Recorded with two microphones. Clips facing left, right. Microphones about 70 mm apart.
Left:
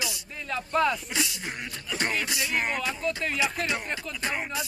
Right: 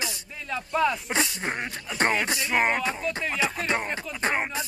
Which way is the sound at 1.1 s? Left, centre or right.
Right.